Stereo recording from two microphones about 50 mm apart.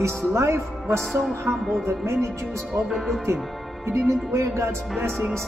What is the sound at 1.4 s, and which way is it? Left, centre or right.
Music, right.